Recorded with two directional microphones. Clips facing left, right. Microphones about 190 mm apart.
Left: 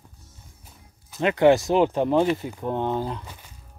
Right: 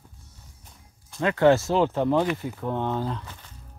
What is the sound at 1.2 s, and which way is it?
Speech, 15° left (ahead or behind).